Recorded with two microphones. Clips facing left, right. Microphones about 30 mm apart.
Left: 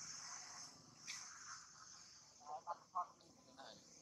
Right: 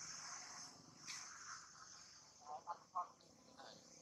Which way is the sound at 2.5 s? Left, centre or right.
Centre.